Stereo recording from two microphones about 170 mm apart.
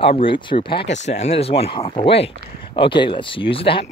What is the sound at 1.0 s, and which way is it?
Speech, 40° left (ahead or behind).